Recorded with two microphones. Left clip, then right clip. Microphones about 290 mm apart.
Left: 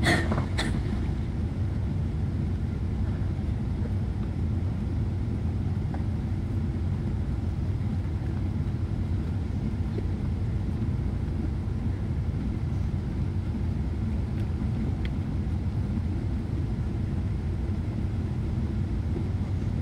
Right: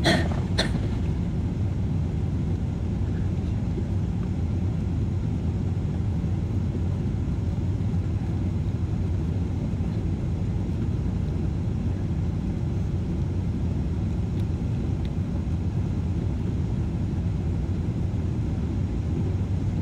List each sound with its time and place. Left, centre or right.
0.0 s vehicle: left